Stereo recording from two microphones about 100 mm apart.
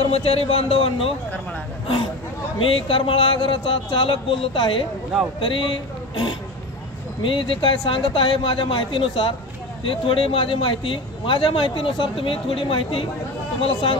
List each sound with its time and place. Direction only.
0.0 s speech: 75° left (ahead or behind)
2.6 s a man's voice: 60° left (ahead or behind)